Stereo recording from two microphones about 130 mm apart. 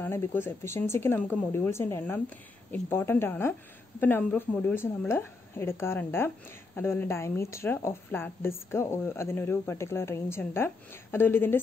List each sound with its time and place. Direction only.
0.0 s a woman's voice: 15° left (ahead or behind)